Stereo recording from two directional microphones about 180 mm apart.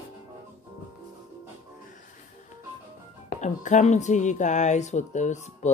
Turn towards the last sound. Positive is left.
turn(degrees=40)  # may be behind; listen again after turning